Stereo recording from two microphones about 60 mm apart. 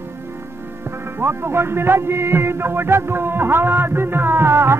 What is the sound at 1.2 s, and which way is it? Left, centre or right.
Music, right.